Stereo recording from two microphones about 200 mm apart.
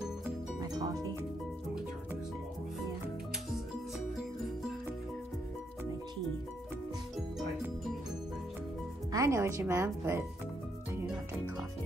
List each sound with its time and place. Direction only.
0.6 s music: 20° right (ahead or behind)
9.1 s speech: 15° right (ahead or behind)